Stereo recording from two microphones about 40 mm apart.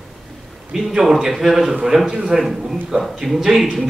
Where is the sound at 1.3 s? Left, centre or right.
Centre.